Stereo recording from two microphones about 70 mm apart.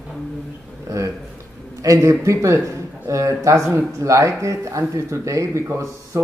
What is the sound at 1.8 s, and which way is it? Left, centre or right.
Speech, right.